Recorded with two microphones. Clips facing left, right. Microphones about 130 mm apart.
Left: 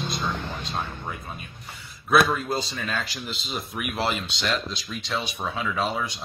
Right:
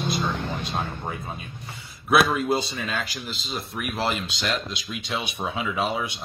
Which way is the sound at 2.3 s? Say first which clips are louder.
Right 4 dB; 5° right (ahead or behind).